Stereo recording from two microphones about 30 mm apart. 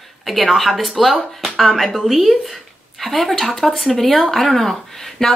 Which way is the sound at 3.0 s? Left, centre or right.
Centre.